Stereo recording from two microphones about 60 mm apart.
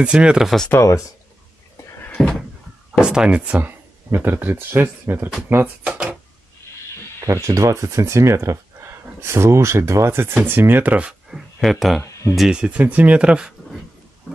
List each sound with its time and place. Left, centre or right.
0.0 s speech: centre
2.2 s cupboard open or close: centre
2.9 s speech: centre
3.5 s speech: right
5.9 s speech: centre
7.2 s speech: right
10.3 s speech: right
11.1 s speech: centre
12.0 s speech: left
12.4 s speech: centre